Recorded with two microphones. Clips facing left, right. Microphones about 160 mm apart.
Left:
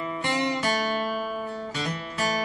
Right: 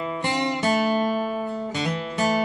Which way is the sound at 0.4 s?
25° right (ahead or behind).